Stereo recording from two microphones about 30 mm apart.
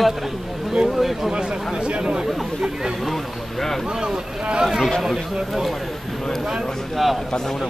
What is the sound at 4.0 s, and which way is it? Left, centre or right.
Speech, right.